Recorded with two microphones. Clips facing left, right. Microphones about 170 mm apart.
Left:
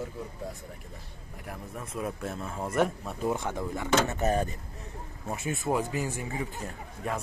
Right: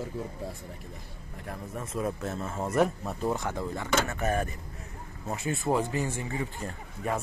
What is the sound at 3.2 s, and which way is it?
Speech, 10° left (ahead or behind).